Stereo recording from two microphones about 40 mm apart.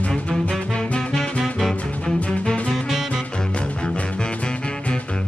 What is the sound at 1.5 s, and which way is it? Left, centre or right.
Music, centre.